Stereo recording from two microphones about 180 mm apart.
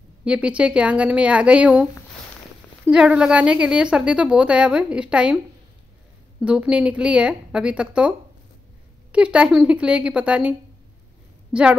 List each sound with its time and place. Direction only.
0.2 s a woman's voice: 5° right (ahead or behind)
6.4 s a woman's voice: 5° right (ahead or behind)
9.1 s a woman's voice: 5° right (ahead or behind)
11.5 s a woman's voice: 5° right (ahead or behind)